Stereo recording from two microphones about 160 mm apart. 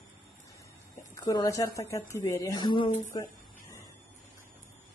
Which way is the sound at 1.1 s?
20° left (ahead or behind).